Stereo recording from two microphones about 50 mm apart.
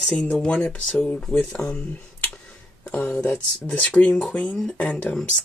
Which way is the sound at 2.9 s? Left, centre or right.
Left.